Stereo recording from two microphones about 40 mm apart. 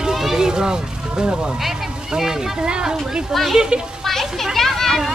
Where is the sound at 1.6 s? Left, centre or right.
Centre.